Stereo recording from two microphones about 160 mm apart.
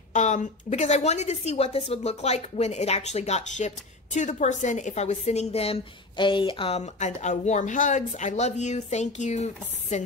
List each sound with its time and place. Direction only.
0.1 s a woman's voice: 50° left (ahead or behind); by 6.8 s 35° left (ahead or behind)
7.0 s a woman's voice: 45° left (ahead or behind)